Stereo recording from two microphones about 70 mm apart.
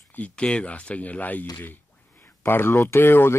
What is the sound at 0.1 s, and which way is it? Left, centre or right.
Speech, centre.